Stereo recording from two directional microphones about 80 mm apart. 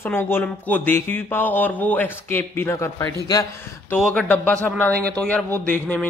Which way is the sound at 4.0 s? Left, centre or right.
Centre.